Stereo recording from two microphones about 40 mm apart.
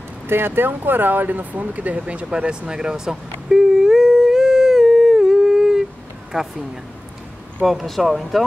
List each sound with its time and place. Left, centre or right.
0.3 s speech: right
2.7 s humming: centre
6.3 s speech: right
7.6 s speech: centre